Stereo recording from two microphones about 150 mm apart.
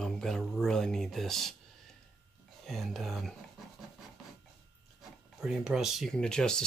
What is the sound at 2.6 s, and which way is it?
Speech, centre (ahead or behind).